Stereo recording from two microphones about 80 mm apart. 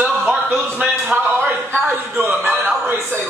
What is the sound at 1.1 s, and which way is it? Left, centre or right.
A man's voice, right.